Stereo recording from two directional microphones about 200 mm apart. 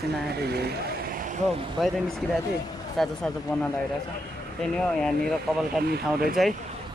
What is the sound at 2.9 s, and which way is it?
Speech, centre (ahead or behind).